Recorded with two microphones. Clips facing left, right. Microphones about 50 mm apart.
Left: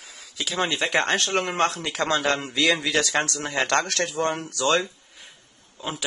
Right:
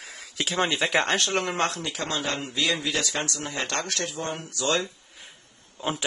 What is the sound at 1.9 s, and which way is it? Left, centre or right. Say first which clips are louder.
Speech: left 6 dB; left.